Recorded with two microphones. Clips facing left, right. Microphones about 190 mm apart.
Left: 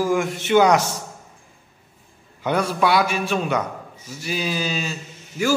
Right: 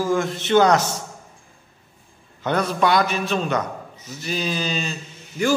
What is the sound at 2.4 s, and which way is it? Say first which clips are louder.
A man's voice: even; 10° left (ahead or behind).